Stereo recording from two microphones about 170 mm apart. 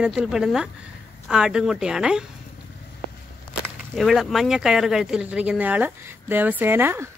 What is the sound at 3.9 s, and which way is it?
Speech, centre (ahead or behind).